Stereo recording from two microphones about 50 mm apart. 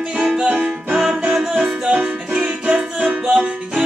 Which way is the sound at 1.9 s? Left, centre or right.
Right.